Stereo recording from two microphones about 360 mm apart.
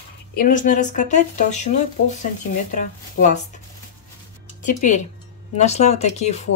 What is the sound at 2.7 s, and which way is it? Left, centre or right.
Speech, left.